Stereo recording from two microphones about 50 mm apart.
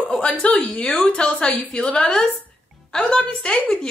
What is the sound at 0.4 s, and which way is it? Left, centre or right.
A woman's voice, left.